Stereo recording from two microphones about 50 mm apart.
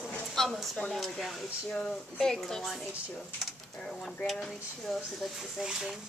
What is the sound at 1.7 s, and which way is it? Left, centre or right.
Speech, centre.